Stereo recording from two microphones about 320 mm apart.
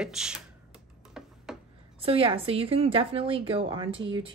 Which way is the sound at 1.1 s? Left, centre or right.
Centre.